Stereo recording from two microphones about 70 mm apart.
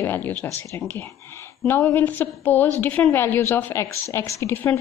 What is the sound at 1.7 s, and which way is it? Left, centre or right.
A woman's voice, left.